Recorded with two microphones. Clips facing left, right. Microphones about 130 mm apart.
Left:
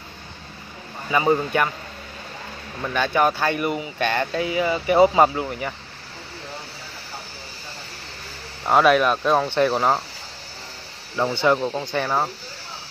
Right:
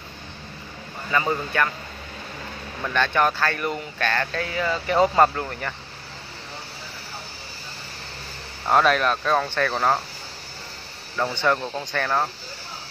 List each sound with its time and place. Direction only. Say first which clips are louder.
1.1 s speech: left 4 dB; 20° left (ahead or behind)
2.8 s speech: left 1 dB; 10° left (ahead or behind)
8.6 s speech: left 3 dB; 5° left (ahead or behind)
11.1 s speech: left 3 dB; 10° left (ahead or behind)